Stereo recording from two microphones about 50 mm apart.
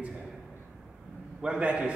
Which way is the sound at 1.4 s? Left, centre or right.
Right.